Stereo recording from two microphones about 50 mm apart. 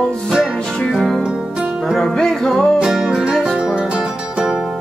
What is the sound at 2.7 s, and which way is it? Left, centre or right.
Music, centre.